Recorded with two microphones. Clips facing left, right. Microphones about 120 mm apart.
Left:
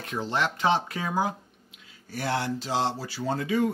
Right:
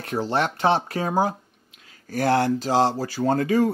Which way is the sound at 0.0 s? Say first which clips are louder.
Right 5 dB; 35° right (ahead or behind).